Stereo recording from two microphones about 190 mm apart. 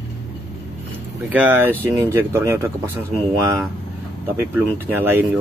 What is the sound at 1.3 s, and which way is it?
Speech, 10° right (ahead or behind).